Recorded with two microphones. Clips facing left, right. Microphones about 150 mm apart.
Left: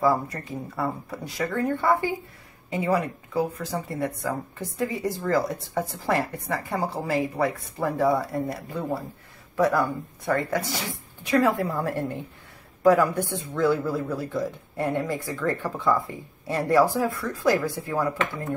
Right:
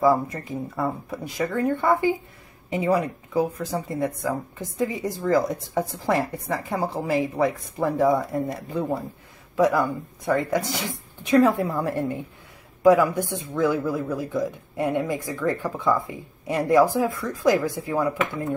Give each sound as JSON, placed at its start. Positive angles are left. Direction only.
{"t": 0.0, "sound": "speech", "side_deg": -20}
{"t": 11.5, "sound": "a woman's voice", "side_deg": 0}
{"t": 11.8, "sound": "speech", "side_deg": -15}